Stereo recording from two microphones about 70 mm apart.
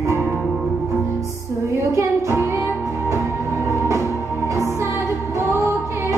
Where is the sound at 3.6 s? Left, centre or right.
Right.